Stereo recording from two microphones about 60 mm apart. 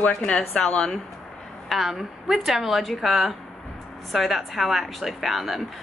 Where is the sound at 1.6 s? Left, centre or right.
Centre.